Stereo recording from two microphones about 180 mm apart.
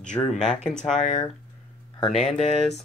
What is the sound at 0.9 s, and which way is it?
Speech, 40° left (ahead or behind).